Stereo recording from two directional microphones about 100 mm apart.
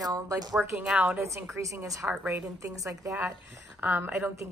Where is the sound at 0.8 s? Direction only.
15° right (ahead or behind).